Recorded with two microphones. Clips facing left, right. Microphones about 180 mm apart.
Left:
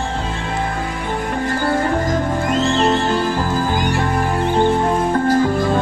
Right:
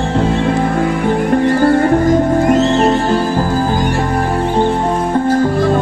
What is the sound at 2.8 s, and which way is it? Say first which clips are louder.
Music: right 4 dB; 35° right (ahead or behind).